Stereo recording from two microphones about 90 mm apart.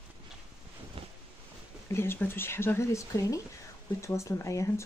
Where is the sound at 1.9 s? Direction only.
25° left (ahead or behind).